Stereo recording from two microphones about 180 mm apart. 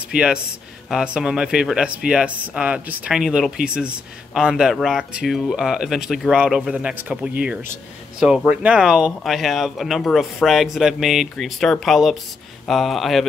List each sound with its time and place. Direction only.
0.1 s speech: 5° right (ahead or behind)